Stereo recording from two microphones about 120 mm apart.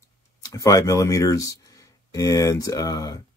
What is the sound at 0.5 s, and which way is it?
Speech, 30° left (ahead or behind).